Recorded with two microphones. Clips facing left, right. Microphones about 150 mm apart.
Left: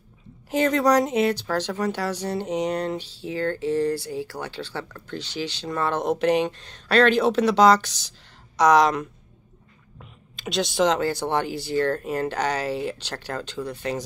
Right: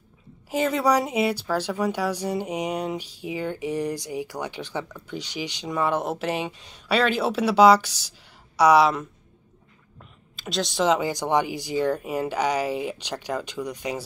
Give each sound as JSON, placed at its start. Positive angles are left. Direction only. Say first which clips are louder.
{"t": 0.5, "sound": "speech", "louder": "left 2 dB", "side_deg": -5}
{"t": 10.3, "sound": "speech", "louder": "left 2 dB", "side_deg": 0}
{"t": 11.0, "sound": "speech", "louder": "right 1 dB", "side_deg": -15}